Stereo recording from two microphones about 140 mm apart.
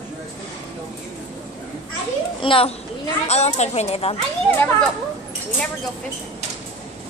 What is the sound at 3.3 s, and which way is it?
Speech, 50° left (ahead or behind).